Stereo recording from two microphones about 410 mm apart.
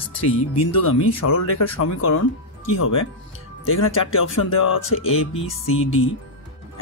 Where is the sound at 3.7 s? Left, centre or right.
Left.